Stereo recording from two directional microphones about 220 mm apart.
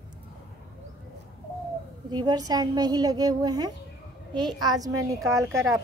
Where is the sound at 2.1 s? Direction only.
15° right (ahead or behind).